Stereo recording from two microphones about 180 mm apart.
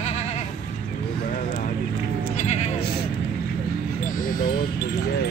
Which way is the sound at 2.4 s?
40° left (ahead or behind).